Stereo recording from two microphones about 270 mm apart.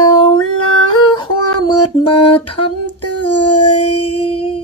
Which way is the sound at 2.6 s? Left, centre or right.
Left.